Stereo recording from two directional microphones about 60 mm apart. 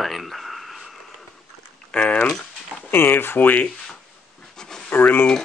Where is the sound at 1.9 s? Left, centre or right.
Centre.